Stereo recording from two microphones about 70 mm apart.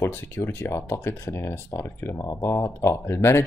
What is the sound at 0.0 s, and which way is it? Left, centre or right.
Speech, left.